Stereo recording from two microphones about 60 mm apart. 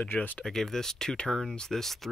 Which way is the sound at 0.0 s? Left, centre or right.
Left.